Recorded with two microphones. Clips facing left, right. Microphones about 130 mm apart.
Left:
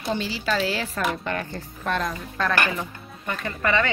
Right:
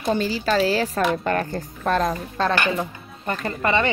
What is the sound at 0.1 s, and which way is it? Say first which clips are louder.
Speech: right 5 dB; 45° right (ahead or behind).